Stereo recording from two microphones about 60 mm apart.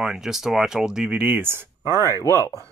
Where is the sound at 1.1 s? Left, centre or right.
Right.